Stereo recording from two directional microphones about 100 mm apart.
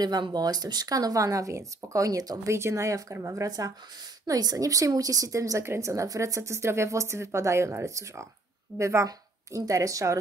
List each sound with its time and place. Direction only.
0.0 s a woman's voice: 45° right (ahead or behind)